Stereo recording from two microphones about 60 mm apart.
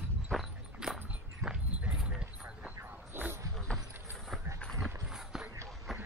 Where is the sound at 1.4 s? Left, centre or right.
Centre.